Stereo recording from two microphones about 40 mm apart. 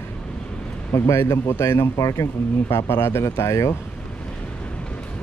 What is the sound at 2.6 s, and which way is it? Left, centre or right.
Speech, left.